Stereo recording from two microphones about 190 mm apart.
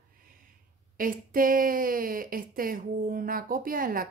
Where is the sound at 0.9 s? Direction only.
45° right (ahead or behind).